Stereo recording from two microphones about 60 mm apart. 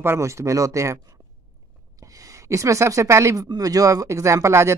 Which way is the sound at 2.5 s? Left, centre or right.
Right.